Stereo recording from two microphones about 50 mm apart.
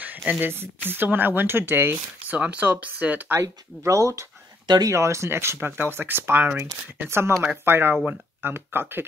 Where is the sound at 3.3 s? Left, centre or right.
Right.